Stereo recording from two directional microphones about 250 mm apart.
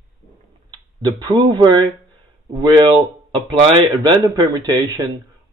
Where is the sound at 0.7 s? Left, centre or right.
Centre.